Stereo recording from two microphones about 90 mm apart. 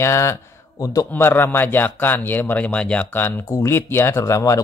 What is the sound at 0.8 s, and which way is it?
Speech, 40° left (ahead or behind).